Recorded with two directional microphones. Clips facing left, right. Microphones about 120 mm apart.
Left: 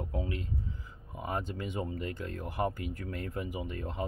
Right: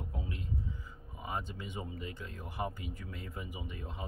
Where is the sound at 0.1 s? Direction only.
75° left (ahead or behind).